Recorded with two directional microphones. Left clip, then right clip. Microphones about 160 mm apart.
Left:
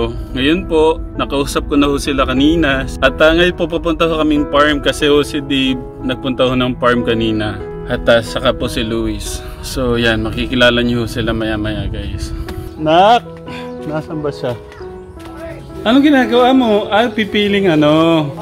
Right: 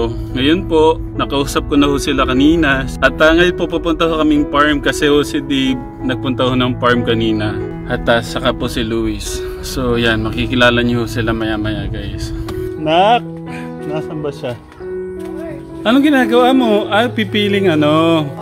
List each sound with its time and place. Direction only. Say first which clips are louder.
0.0 s speech: even; 10° left (ahead or behind)
12.8 s speech: left 2 dB; 20° right (ahead or behind)
15.8 s a man's voice: left 1 dB; 40° right (ahead or behind)